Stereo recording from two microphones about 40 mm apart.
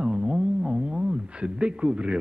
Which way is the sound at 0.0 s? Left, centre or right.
Right.